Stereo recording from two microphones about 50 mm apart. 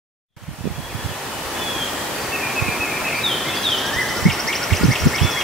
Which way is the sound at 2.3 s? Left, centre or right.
Centre.